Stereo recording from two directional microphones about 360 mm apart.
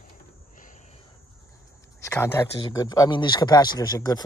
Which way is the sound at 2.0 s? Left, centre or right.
Centre.